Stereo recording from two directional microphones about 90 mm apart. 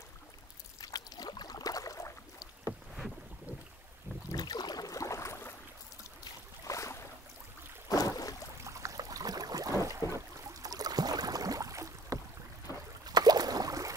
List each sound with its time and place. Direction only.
0.7 s rowboat: 45° left (ahead or behind)
4.3 s boat: 50° left (ahead or behind); by 5.5 s 30° left (ahead or behind)
6.6 s boat: 35° left (ahead or behind)
8.6 s boat: 35° right (ahead or behind)
13.0 s boat: 45° right (ahead or behind)